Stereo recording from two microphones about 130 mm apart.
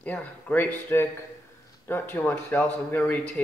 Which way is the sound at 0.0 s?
10° left (ahead or behind).